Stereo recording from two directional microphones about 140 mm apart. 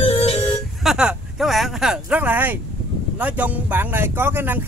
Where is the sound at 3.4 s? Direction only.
15° right (ahead or behind).